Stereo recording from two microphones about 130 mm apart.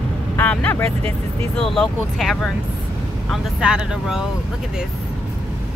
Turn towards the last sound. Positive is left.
turn(degrees=-5)  # may be behind; listen again after turning